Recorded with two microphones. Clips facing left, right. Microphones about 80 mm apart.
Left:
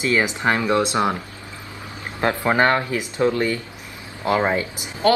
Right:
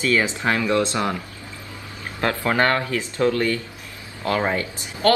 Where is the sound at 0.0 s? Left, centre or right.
Centre.